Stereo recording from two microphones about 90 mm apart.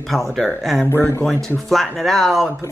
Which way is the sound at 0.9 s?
25° left (ahead or behind).